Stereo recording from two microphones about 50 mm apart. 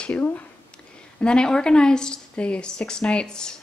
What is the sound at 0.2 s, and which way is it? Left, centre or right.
Speech, left.